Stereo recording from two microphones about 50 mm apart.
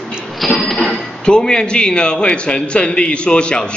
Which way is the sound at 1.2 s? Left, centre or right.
Centre.